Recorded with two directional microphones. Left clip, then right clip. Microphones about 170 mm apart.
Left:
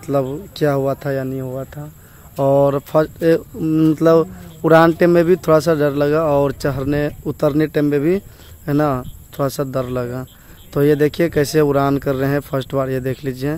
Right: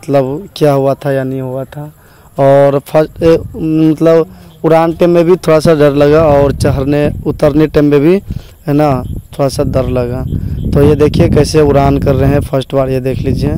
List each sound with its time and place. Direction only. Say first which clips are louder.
0.0 s speech: right 8 dB; 35° right (ahead or behind)
3.6 s speech: right 5 dB; 20° right (ahead or behind)
5.4 s speech: right 7 dB; 40° right (ahead or behind)